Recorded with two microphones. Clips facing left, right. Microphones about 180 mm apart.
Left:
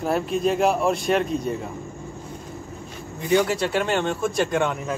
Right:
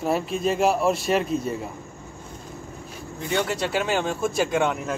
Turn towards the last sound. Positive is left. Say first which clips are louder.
# even
turn(degrees=0)  # may be behind; listen again after turning